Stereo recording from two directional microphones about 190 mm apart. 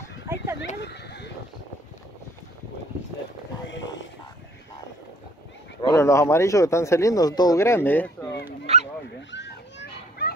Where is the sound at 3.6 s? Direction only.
70° left (ahead or behind).